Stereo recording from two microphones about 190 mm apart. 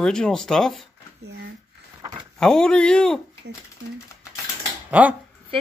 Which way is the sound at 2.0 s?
25° right (ahead or behind).